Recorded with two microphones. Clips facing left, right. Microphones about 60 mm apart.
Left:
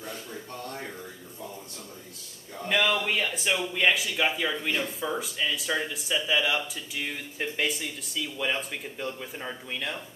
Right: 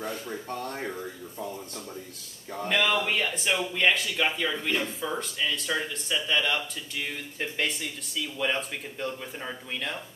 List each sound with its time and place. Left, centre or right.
0.0 s speech: right
2.7 s speech: centre